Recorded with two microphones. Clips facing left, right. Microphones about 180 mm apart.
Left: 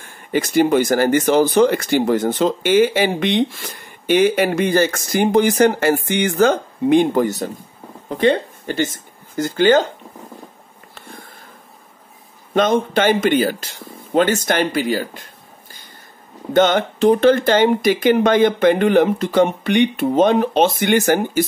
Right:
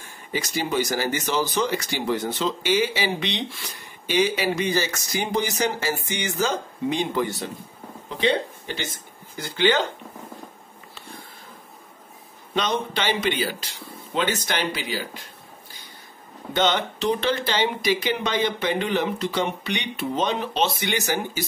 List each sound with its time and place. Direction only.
0.3 s speech: 55° left (ahead or behind)
12.5 s speech: 50° left (ahead or behind)
16.5 s speech: 50° left (ahead or behind)